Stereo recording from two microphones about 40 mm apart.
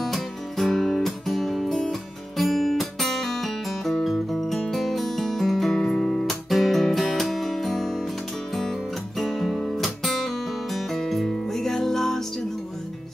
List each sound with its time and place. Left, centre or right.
0.0 s music: centre
5.9 s guitar: centre
6.5 s music: centre